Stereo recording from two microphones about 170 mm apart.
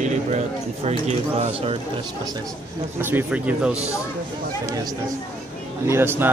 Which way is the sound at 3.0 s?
10° right (ahead or behind).